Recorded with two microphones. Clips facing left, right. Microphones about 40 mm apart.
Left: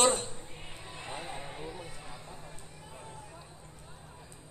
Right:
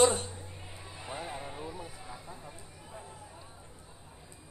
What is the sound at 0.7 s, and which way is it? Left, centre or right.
Crowd, left.